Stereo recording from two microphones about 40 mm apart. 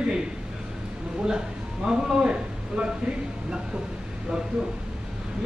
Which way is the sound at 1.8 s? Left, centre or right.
Centre.